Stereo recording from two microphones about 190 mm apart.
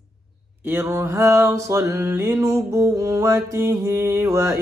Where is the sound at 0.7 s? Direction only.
15° right (ahead or behind).